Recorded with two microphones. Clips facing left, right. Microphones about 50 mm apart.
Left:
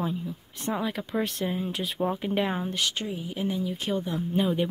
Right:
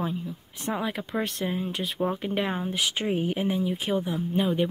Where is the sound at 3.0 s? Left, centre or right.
Right.